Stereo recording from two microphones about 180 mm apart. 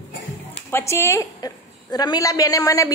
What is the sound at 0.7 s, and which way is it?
A woman's voice, 15° left (ahead or behind).